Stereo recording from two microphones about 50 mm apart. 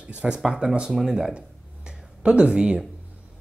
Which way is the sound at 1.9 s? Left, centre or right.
Centre.